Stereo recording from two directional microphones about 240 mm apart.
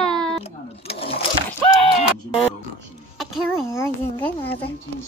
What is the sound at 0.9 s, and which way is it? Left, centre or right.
Speech, left.